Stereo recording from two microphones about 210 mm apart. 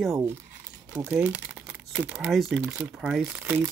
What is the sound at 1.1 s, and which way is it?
Speech, 5° right (ahead or behind).